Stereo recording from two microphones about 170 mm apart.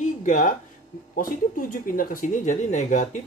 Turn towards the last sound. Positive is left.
turn(degrees=45)  # may be behind; listen again after turning